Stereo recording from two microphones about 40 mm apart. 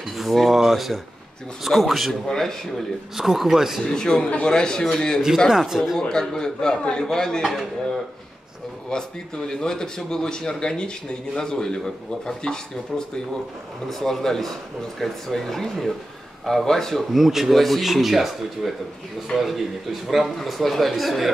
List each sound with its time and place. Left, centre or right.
0.2 s a man's voice: centre
3.2 s speech: centre
3.8 s speech: centre
5.7 s speech: centre
5.9 s speech: centre
8.9 s speech: centre
17.1 s a man's voice: centre